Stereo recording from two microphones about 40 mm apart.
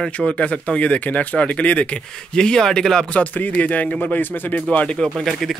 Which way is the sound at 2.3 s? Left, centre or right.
Centre.